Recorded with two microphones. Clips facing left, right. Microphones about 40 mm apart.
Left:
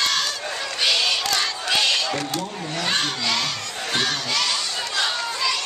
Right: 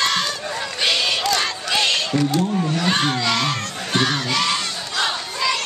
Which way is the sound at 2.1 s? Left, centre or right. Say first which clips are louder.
Right 7 dB; centre.